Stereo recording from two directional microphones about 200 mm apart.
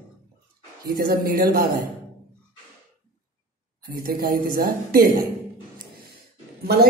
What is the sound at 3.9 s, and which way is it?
A man's voice, 45° right (ahead or behind).